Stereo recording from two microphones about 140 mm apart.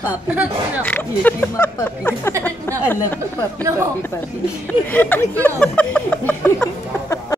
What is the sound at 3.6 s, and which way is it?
Speech, 20° right (ahead or behind).